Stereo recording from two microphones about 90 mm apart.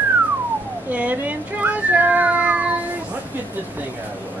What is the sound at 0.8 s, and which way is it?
Speech, 20° right (ahead or behind).